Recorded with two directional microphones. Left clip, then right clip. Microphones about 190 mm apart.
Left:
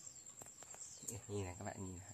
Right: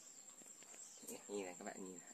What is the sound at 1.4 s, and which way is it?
Insect, 30° left (ahead or behind).